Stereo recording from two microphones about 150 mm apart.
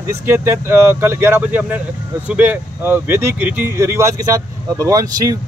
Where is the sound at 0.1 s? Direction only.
15° right (ahead or behind).